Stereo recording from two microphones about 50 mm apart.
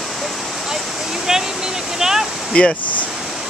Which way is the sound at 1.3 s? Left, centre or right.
Centre.